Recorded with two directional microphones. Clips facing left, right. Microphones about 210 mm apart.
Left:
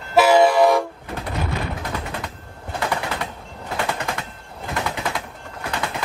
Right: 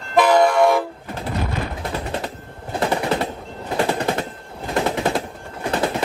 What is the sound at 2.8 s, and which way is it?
Machine gun, 30° right (ahead or behind).